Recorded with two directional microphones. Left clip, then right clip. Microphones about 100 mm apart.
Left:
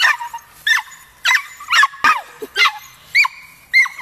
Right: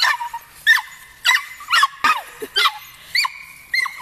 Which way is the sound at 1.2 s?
25° right (ahead or behind).